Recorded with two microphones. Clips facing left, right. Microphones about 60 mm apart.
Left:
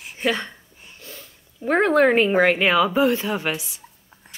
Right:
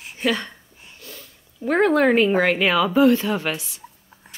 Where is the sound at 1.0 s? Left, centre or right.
Left; by 3.8 s centre.